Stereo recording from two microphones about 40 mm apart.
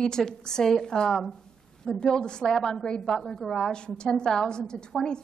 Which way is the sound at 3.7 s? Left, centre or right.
Left.